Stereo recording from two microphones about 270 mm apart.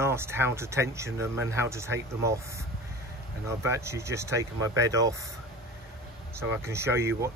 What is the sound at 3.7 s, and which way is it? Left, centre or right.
Speech, centre.